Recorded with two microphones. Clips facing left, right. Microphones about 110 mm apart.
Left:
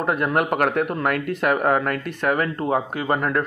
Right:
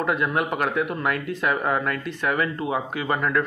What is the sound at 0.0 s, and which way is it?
Speech, 50° left (ahead or behind).